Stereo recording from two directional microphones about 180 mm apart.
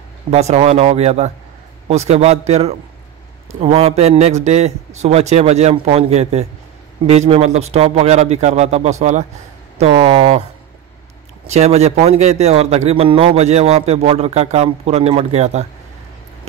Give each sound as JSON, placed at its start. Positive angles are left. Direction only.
{"t": 0.3, "sound": "a man's voice", "side_deg": -35}
{"t": 11.4, "sound": "a man's voice", "side_deg": -35}